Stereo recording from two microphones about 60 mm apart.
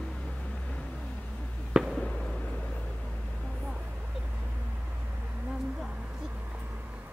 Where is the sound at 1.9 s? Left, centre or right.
Centre.